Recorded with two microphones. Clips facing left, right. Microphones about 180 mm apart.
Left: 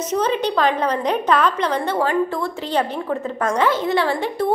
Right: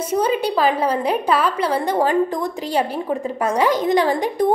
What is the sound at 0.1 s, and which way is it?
A woman's voice, 10° right (ahead or behind).